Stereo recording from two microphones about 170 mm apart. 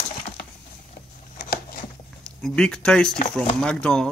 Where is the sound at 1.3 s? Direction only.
60° left (ahead or behind).